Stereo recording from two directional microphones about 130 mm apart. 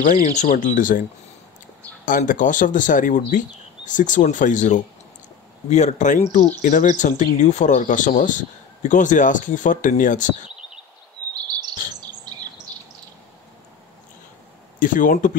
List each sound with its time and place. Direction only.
0.0 s speech: 75° left (ahead or behind); by 1.0 s 90° left
2.0 s speech: 90° left
5.7 s speech: 60° left (ahead or behind); by 10.3 s 80° left
12.3 s bird: 30° right (ahead or behind)
14.8 s speech: 90° left